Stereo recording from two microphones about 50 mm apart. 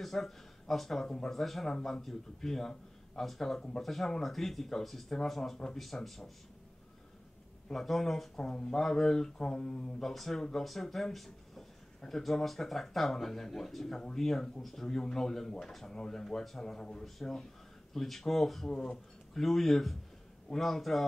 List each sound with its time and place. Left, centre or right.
0.0 s speech: centre
7.7 s speech: centre